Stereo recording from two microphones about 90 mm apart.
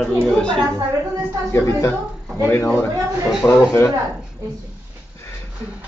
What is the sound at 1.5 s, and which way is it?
A woman's voice, 35° left (ahead or behind).